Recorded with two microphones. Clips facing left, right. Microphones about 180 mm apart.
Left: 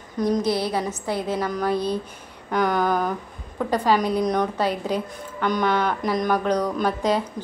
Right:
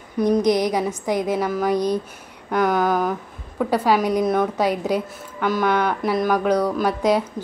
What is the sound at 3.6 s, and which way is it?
A woman's voice, 10° right (ahead or behind).